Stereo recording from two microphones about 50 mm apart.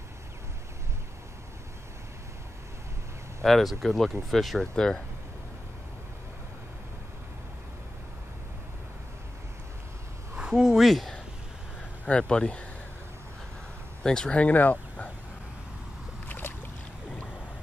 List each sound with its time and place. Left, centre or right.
3.4 s speech: centre
4.7 s speech: centre
10.3 s a sound: centre
12.2 s speech: centre
14.0 s speech: centre
14.3 s speech: left
16.3 s boat: left